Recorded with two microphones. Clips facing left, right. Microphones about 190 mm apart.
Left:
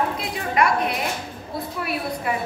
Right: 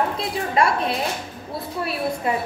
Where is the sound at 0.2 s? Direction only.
30° right (ahead or behind).